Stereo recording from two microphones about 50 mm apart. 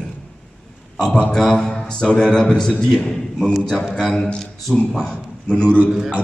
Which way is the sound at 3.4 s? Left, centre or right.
Centre.